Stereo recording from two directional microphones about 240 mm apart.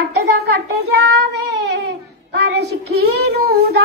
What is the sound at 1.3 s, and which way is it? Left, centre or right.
A child's voice, right.